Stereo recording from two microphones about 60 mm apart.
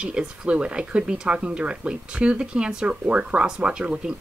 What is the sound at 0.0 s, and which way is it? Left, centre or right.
Speech, centre.